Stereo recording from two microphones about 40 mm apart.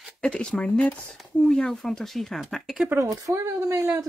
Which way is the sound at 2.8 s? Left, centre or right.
Right.